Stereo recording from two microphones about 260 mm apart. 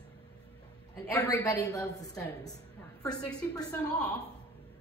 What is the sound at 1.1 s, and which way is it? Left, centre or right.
Speech, centre.